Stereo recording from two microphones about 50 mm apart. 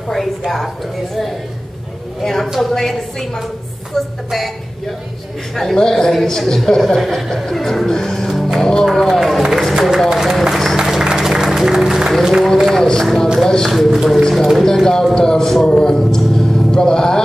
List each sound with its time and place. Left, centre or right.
0.1 s speech: centre
2.2 s a woman's voice: centre
5.6 s a woman's voice: centre
9.4 s speech: centre
10.8 s music: centre
12.2 s speech: centre
12.6 s speech: centre